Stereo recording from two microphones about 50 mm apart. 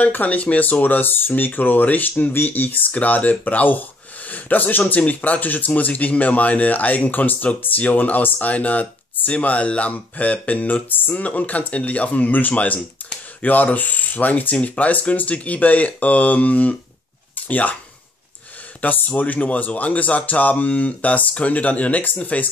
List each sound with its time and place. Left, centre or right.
0.0 s speech: left
18.8 s speech: left